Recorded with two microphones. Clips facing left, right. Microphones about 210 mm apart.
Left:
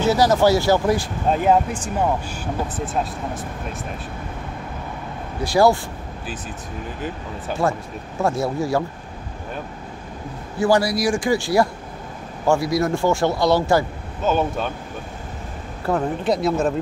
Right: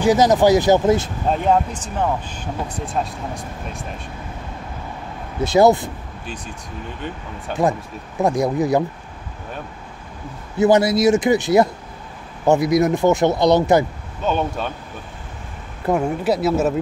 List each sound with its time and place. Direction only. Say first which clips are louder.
0.0 s speech: right 2 dB; 15° right (ahead or behind)
1.3 s speech: left 1 dB; 5° left (ahead or behind)
5.4 s speech: right 3 dB; 20° right (ahead or behind)
7.6 s speech: right 3 dB; 15° right (ahead or behind)
10.6 s speech: right 4 dB; 20° right (ahead or behind)
14.2 s speech: left 1 dB; centre (ahead or behind)
15.9 s speech: right 2 dB; 10° right (ahead or behind)